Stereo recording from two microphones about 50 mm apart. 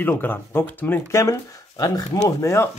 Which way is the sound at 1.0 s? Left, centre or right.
Left.